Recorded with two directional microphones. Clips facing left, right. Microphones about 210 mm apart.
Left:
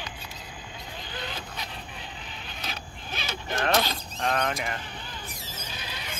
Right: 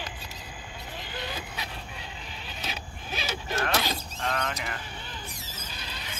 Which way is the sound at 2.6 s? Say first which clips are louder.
Right 1 dB; 5° right (ahead or behind).